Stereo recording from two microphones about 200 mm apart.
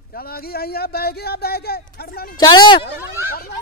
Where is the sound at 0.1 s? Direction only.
50° left (ahead or behind).